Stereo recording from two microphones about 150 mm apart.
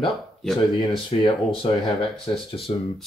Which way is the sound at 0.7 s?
30° left (ahead or behind).